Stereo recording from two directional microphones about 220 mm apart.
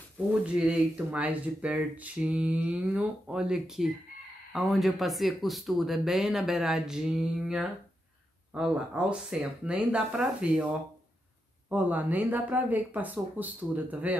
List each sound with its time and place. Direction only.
0.3 s speech: 5° right (ahead or behind)
11.7 s speech: 5° right (ahead or behind)